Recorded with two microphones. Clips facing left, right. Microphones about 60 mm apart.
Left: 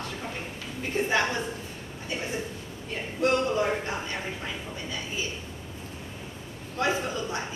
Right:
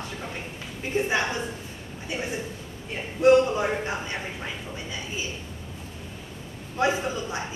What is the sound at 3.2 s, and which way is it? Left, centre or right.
Speech, centre.